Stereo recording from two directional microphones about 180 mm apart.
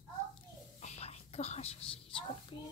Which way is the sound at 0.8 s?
35° left (ahead or behind).